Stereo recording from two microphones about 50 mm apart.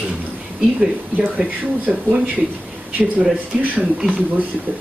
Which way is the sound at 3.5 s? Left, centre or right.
Centre.